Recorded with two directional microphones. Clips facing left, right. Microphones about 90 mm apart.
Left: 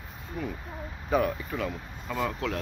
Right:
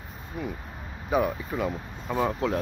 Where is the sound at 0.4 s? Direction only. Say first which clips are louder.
Even; 15° right (ahead or behind).